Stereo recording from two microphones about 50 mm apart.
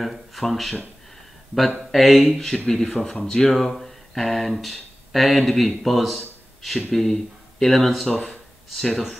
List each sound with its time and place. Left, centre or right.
0.0 s speech: centre
1.9 s speech: centre
8.3 s a sound: centre